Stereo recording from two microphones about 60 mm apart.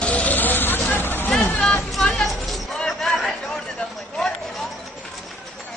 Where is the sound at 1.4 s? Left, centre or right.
Left.